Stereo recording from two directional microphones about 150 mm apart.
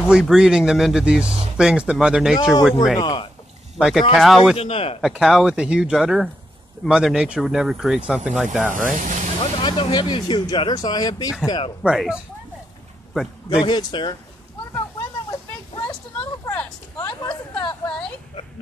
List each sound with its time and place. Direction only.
0.1 s speech: 5° right (ahead or behind)
3.0 s speech: 30° left (ahead or behind)
3.7 s speech: centre (ahead or behind)
4.6 s a man's voice: 40° left (ahead or behind)
5.0 s speech: centre (ahead or behind)
8.7 s speech: 60° right (ahead or behind)
9.4 s speech: 35° left (ahead or behind)
11.8 s speech: 5° right (ahead or behind)
13.5 s speech: 30° left (ahead or behind)
16.4 s a sound: 15° left (ahead or behind)
17.2 s a sound: 30° left (ahead or behind)